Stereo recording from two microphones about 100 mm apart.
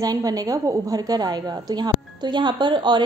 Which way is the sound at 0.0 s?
40° right (ahead or behind).